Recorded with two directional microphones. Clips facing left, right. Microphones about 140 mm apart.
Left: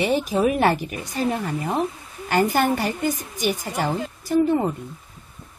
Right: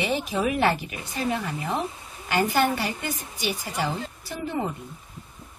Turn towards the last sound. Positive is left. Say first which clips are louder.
# left 10 dB
turn(degrees=45)  # may be behind; listen again after turning